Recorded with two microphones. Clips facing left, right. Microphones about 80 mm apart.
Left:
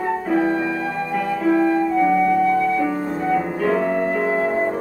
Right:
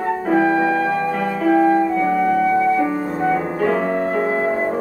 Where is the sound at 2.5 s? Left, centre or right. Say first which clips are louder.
Right 2 dB; right.